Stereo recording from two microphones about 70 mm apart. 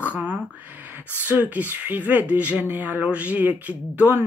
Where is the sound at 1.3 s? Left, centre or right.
Right.